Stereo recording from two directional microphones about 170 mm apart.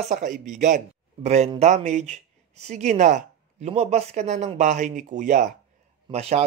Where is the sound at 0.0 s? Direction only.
50° right (ahead or behind).